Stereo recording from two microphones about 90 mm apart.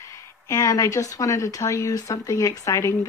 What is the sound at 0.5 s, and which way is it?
Speech, 35° left (ahead or behind).